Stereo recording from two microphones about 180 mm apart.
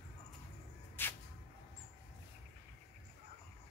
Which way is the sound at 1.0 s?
10° left (ahead or behind).